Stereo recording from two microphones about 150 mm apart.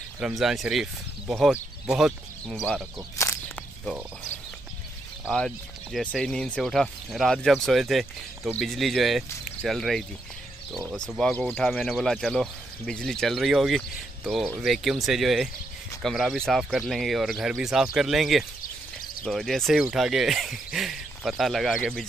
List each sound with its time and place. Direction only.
0.2 s speech: centre (ahead or behind)
3.2 s whip: 20° left (ahead or behind)
5.3 s speech: 5° left (ahead or behind)